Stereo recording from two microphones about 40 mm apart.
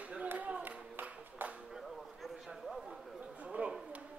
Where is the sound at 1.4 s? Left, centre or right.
Right.